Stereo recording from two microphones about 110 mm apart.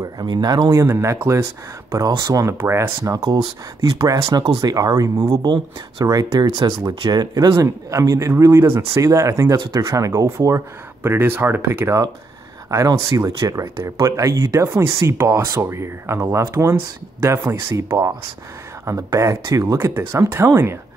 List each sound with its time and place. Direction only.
0.2 s speech: 35° right (ahead or behind)
2.5 s speech: 20° right (ahead or behind)
4.3 s speech: 35° right (ahead or behind)
5.2 s speech: 50° right (ahead or behind)
6.0 s speech: 35° right (ahead or behind)
7.5 s speech: 25° right (ahead or behind)